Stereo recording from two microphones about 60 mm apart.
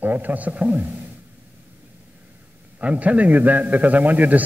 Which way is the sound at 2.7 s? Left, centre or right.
Right.